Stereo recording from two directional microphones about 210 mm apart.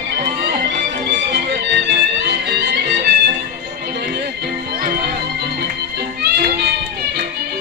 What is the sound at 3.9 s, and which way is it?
Music, 50° right (ahead or behind).